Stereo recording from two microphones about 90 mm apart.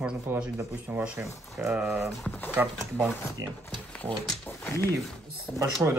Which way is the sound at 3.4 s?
35° right (ahead or behind).